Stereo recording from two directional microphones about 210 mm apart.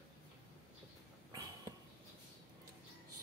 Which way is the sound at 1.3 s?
20° right (ahead or behind).